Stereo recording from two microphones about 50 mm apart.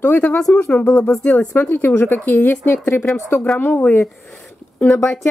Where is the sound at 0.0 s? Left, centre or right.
Left.